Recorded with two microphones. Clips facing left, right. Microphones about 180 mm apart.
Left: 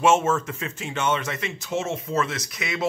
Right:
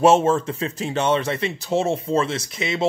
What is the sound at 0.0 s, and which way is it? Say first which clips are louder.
Speech: right 4 dB; 35° right (ahead or behind).